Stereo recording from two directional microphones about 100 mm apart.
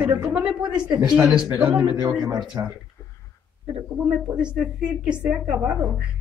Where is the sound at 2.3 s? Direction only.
35° right (ahead or behind).